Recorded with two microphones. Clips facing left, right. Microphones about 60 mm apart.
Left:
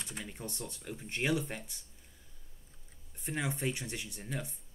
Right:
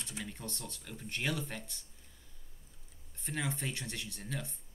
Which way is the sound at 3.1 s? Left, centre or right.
Centre.